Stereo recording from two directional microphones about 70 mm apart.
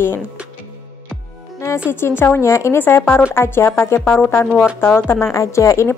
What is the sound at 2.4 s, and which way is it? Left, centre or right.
A woman's voice, left.